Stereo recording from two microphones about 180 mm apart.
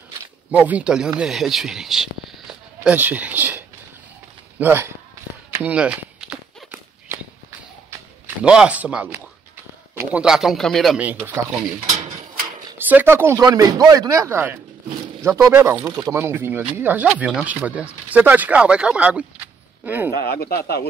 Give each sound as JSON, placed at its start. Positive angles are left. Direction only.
{"t": 0.5, "sound": "speech", "side_deg": -10}
{"t": 5.6, "sound": "walk", "side_deg": -5}
{"t": 8.5, "sound": "speech", "side_deg": -5}
{"t": 12.7, "sound": "speech", "side_deg": -10}
{"t": 20.1, "sound": "speech", "side_deg": 60}